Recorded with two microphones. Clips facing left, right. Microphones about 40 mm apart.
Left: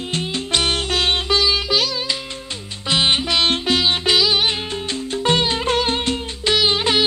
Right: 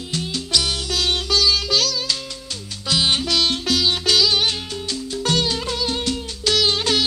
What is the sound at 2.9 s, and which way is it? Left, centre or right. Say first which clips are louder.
Music: left 2 dB; left.